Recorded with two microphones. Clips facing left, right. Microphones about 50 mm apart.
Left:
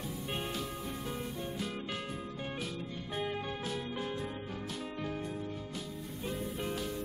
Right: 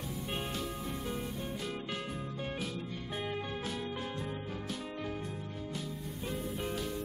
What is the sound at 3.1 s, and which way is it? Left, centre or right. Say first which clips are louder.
Music: left 1 dB; centre.